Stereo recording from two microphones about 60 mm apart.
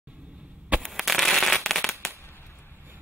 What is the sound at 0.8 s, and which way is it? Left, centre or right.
Fireworks, centre.